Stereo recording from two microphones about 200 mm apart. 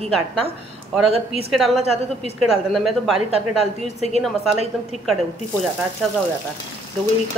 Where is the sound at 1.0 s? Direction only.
30° right (ahead or behind).